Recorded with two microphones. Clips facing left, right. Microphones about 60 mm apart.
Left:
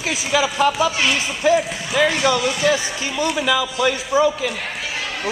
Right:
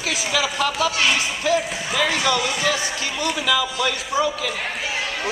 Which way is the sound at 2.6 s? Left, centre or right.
Left.